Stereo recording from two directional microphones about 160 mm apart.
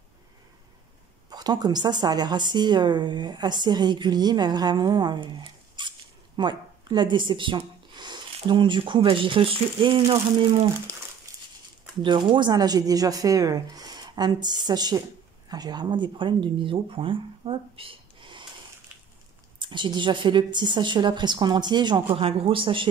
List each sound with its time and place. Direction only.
1.3 s a woman's voice: 25° right (ahead or behind)
11.3 s a sound: 20° right (ahead or behind)
12.0 s a woman's voice: 30° right (ahead or behind)
19.6 s a woman's voice: 30° right (ahead or behind)